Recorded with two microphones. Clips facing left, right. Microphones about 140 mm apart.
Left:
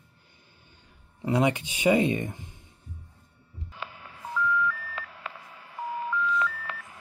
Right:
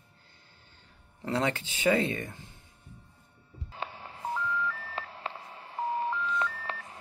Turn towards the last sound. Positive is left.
turn(degrees=-30)  # may be behind; listen again after turning